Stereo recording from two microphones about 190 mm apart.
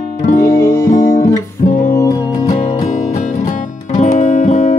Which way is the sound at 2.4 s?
35° left (ahead or behind).